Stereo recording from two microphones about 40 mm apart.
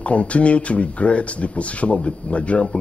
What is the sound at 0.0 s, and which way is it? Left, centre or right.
Speech, left.